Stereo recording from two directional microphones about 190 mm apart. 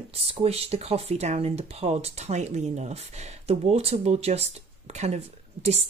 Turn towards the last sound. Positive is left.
turn(degrees=-35)  # may be behind; listen again after turning